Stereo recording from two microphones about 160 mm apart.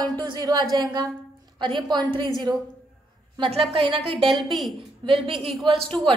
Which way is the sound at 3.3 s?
35° right (ahead or behind).